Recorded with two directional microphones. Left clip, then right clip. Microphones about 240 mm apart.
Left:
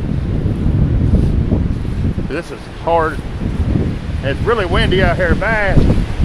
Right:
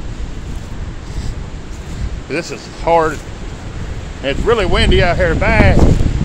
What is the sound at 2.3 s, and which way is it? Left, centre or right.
Speech, centre.